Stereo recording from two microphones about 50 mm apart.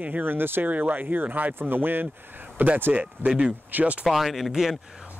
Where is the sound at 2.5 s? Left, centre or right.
Right.